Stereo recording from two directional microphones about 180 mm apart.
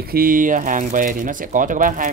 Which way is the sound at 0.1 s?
50° right (ahead or behind).